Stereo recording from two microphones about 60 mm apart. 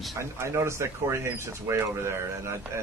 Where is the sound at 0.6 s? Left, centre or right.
Right.